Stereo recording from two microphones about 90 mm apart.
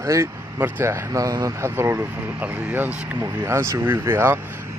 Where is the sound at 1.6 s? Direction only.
25° right (ahead or behind).